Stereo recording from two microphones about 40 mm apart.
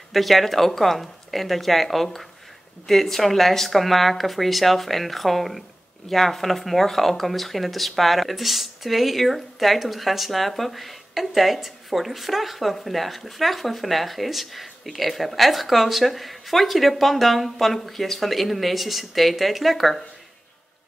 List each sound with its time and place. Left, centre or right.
0.1 s speech: centre